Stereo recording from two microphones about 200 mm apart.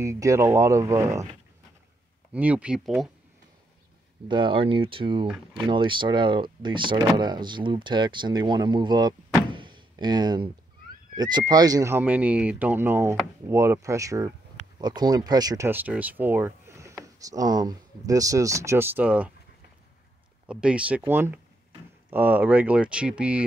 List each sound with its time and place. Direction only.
0.0 s speech: 15° right (ahead or behind)
2.3 s speech: 5° right (ahead or behind)
4.3 s speech: 25° right (ahead or behind)
9.5 s a sound: 25° right (ahead or behind)
11.1 s speech: 20° right (ahead or behind)
20.4 s speech: 5° right (ahead or behind)